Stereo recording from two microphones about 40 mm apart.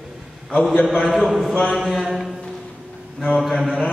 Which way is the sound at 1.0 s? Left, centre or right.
Centre.